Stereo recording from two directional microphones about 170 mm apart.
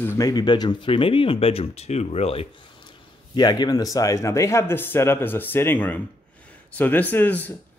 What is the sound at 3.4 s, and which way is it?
Speech, 25° left (ahead or behind).